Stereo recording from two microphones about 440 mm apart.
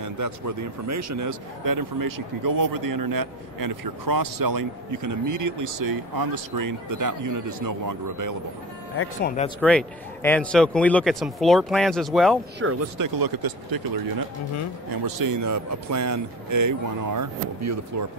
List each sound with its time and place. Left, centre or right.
0.0 s speech: right
8.9 s speech: left
9.6 s speech: centre
12.6 s speech: right
12.9 s speech: right